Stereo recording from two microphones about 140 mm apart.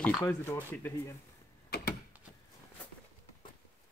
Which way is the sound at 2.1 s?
10° right (ahead or behind).